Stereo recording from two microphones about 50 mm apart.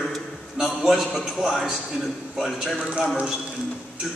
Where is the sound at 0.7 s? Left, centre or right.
Centre.